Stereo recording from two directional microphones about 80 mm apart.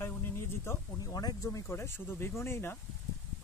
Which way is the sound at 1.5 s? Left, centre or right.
Left.